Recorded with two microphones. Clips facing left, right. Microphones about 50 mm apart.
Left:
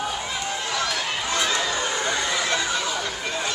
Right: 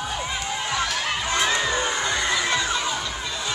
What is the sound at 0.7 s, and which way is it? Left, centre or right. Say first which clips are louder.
Crowd: right 2 dB; centre.